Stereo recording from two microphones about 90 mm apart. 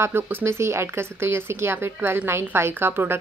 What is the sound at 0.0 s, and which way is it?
Speech, 30° right (ahead or behind).